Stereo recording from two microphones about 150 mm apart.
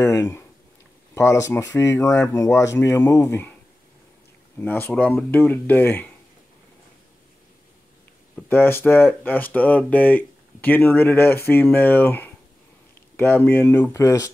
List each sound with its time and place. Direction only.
0.0 s speech: 20° left (ahead or behind)
4.6 s speech: 15° left (ahead or behind)
8.4 s speech: 15° left (ahead or behind)